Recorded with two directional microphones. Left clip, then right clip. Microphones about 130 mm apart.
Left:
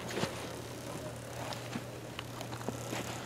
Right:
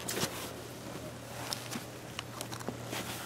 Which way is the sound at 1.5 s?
40° right (ahead or behind).